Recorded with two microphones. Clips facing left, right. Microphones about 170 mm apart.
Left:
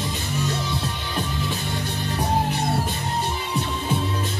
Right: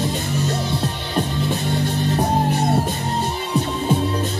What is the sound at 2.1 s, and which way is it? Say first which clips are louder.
Music: right 2 dB; 50° right (ahead or behind).